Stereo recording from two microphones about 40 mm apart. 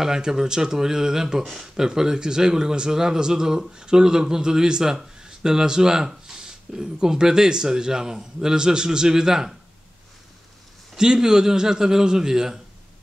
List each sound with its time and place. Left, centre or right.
0.0 s speech: centre
11.0 s speech: centre